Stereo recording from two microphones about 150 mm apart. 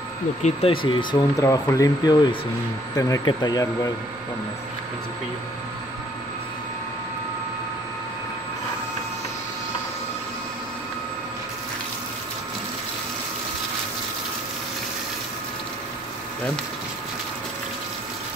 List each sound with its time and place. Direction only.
0.4 s speech: 40° left (ahead or behind)
1.4 s speech: 20° left (ahead or behind)